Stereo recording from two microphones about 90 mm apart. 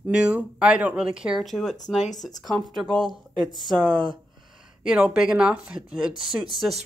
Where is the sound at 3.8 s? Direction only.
55° right (ahead or behind).